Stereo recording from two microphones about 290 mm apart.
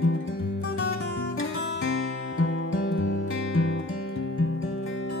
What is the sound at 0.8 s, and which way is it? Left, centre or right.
Music, left.